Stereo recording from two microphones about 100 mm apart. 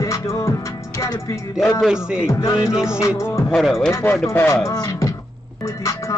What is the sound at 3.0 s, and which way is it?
Music, 30° left (ahead or behind).